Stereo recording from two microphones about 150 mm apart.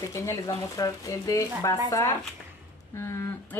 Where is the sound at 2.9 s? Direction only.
20° left (ahead or behind).